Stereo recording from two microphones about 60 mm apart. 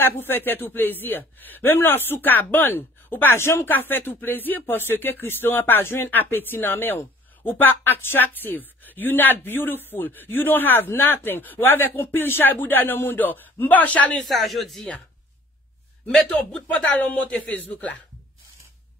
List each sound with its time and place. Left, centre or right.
0.0 s speech: left
14.2 s a man's voice: centre
16.5 s speech: left